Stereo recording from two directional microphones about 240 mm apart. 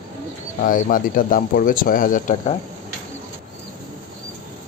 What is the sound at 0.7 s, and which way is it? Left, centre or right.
Speech, left.